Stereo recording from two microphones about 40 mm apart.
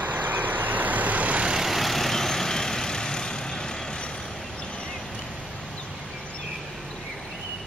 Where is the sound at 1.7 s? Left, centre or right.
Centre.